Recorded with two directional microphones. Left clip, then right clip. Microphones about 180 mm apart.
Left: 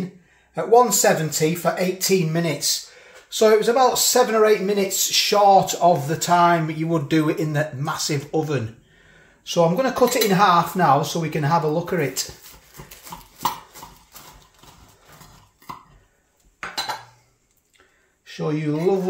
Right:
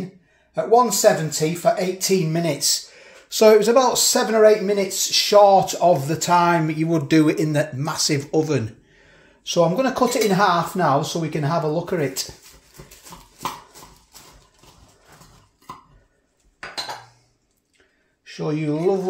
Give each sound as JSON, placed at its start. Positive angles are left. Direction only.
{"t": 0.6, "sound": "speech", "side_deg": -20}
{"t": 2.6, "sound": "speech", "side_deg": -40}
{"t": 9.4, "sound": "speech", "side_deg": -25}
{"t": 18.4, "sound": "speech", "side_deg": -15}